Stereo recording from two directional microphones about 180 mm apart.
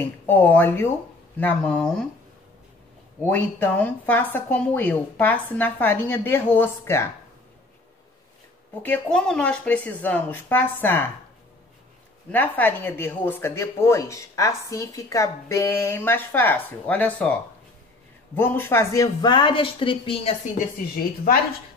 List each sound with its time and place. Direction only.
0.3 s speech: 10° left (ahead or behind)
3.2 s speech: 10° left (ahead or behind)
8.8 s speech: 5° left (ahead or behind)
12.3 s speech: 10° left (ahead or behind); by 20.3 s 30° left (ahead or behind)
20.5 s speech: 55° left (ahead or behind)